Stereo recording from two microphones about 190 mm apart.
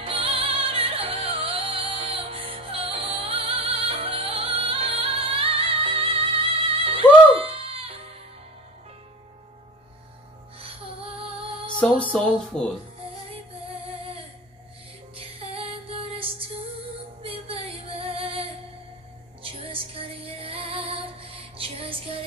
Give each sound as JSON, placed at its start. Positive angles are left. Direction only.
{"t": 0.0, "sound": "music", "side_deg": -30}
{"t": 10.6, "sound": "music", "side_deg": -30}
{"t": 12.1, "sound": "speech", "side_deg": 5}
{"t": 13.0, "sound": "music", "side_deg": -30}